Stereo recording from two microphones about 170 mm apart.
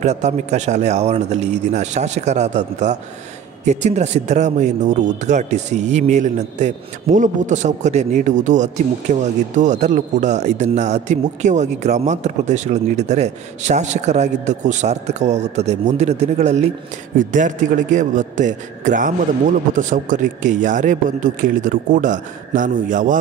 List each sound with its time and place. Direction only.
0.0 s a man's voice: 40° right (ahead or behind)